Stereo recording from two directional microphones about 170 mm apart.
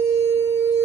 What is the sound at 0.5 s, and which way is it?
Music, 40° right (ahead or behind).